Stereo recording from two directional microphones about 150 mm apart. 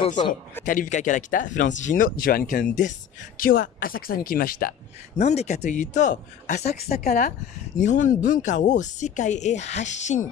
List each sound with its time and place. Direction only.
0.0 s a man's voice: 30° left (ahead or behind)
0.7 s speech: 60° left (ahead or behind)
2.7 s speech: 55° left (ahead or behind); by 4.7 s 70° left (ahead or behind)
5.1 s speech: 45° left (ahead or behind)